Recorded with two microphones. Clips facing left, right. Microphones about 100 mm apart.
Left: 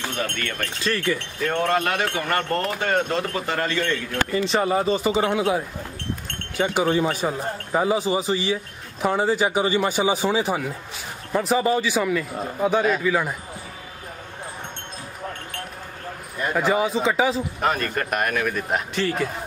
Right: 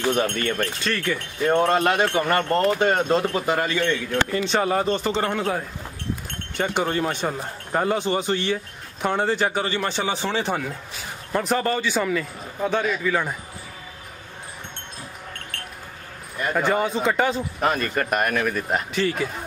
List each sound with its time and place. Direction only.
0.1 s speech: 30° right (ahead or behind)
0.8 s speech: centre (ahead or behind)
1.4 s speech: 30° right (ahead or behind)
3.4 s a man's voice: 15° right (ahead or behind)
4.3 s a man's voice: centre (ahead or behind)
16.5 s speech: centre (ahead or behind)